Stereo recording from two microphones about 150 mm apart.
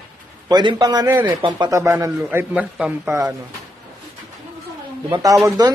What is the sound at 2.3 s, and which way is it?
Speech, 10° right (ahead or behind).